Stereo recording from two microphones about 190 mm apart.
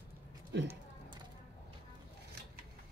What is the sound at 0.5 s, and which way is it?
Speech, 65° right (ahead or behind).